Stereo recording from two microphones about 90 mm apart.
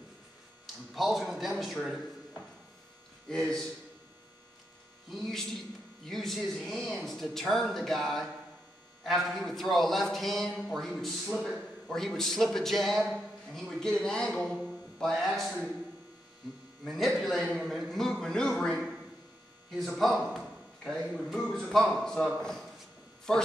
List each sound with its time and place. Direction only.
0.9 s a man's voice: centre (ahead or behind)
3.3 s a man's voice: 5° left (ahead or behind)
5.1 s a man's voice: 5° left (ahead or behind)
16.8 s a man's voice: centre (ahead or behind)